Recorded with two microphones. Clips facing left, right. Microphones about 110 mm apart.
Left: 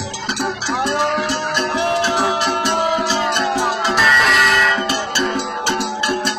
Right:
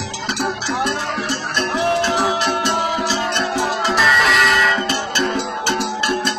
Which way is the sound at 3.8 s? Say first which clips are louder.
Even; centre (ahead or behind).